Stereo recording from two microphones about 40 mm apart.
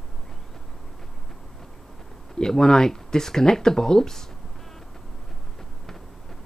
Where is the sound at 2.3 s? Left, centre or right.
Centre.